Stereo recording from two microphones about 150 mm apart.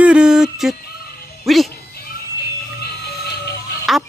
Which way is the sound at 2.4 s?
90° left.